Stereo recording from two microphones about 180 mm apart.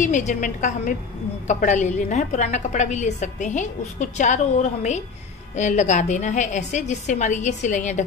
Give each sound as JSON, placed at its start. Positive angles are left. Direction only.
{"t": 0.0, "sound": "a woman's voice", "side_deg": 45}